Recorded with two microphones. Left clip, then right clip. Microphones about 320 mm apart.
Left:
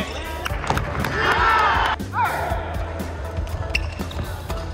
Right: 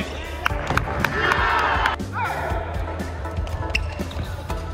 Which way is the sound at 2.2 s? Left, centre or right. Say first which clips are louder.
Left 5 dB; centre.